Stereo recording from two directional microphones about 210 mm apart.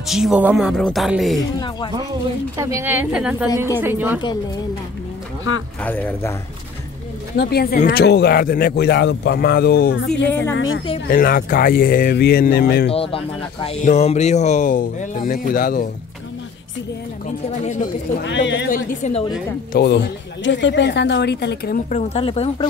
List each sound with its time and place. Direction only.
0.0 s speech: centre (ahead or behind)
2.5 s a woman's voice: 15° right (ahead or behind)
5.8 s speech: 10° left (ahead or behind)
7.3 s a woman's voice: 50° left (ahead or behind)
10.2 s speech: 10° left (ahead or behind)
10.5 s a woman's voice: 70° left (ahead or behind)
11.1 s a woman's voice: 45° left (ahead or behind)
12.9 s speech: 25° left (ahead or behind); by 15.9 s 40° left (ahead or behind)
17.5 s speech: 35° left (ahead or behind)
18.2 s speech: 60° left (ahead or behind)
18.7 s speech: 35° left (ahead or behind)
19.7 s a woman's voice: 50° left (ahead or behind); by 22.7 s 25° left (ahead or behind)